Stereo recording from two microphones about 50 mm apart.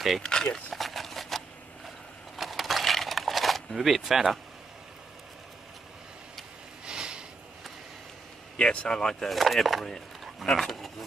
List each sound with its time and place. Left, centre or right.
0.2 s speech: centre
0.7 s a sound: centre
2.3 s coin: centre
6.9 s a sound: centre
8.5 s speech: centre
9.3 s speech: centre